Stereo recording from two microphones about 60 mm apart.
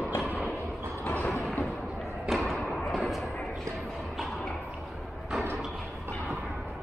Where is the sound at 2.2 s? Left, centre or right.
Centre.